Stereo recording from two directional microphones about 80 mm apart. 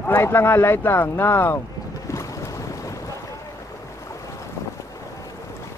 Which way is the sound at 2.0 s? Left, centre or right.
Left.